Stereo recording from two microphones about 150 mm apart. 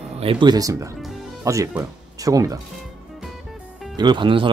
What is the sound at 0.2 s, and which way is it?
Speech, 35° right (ahead or behind).